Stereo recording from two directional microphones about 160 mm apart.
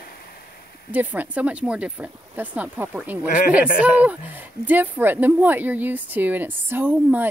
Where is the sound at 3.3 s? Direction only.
55° left (ahead or behind).